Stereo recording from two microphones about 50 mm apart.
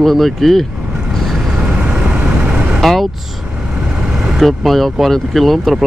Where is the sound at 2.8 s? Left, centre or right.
Centre.